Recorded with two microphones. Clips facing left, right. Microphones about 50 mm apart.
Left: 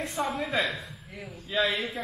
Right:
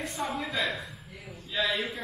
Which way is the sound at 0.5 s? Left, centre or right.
Centre.